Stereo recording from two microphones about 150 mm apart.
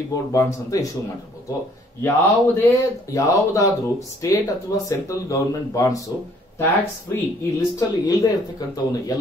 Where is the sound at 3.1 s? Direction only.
20° left (ahead or behind).